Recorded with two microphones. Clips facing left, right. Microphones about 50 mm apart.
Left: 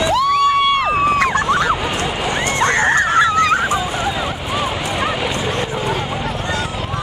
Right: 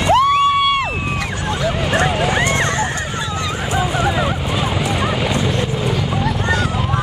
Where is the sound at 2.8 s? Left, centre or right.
Left.